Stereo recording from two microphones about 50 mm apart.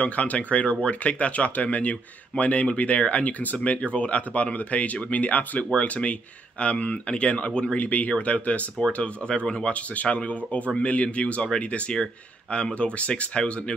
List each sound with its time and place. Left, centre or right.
0.0 s speech: left
7.8 s speech: left